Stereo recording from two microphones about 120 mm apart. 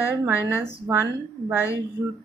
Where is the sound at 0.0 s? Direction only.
20° right (ahead or behind).